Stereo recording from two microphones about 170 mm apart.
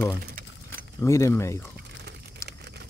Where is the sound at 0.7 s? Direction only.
15° left (ahead or behind).